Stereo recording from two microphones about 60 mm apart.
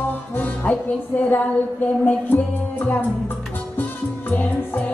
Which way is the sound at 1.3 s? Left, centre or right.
Left.